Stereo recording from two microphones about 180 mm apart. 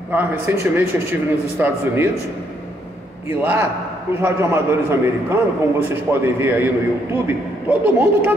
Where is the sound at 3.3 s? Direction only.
15° right (ahead or behind).